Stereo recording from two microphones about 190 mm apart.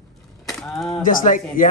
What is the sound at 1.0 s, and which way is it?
Speech, 45° left (ahead or behind).